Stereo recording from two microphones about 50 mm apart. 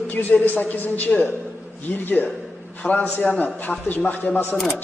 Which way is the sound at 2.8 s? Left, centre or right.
Left.